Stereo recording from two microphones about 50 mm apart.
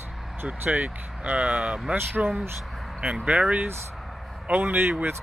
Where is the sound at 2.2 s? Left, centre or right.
Right.